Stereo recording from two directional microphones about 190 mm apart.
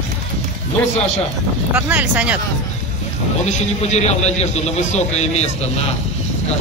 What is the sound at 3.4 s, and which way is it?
A man's voice, 35° left (ahead or behind).